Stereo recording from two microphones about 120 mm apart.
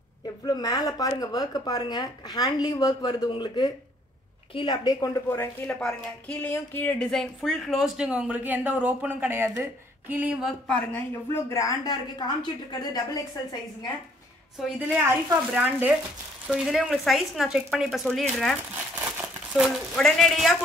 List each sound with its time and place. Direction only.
0.5 s a woman's voice: 35° left (ahead or behind)
5.8 s speech: 10° left (ahead or behind); by 10.4 s 15° right (ahead or behind)
10.7 s speech: 10° left (ahead or behind)
11.4 s a woman's voice: 25° left (ahead or behind)
14.9 s a woman's voice: 15° right (ahead or behind)
16.4 s speech: 5° right (ahead or behind)
19.0 s speech: 15° right (ahead or behind)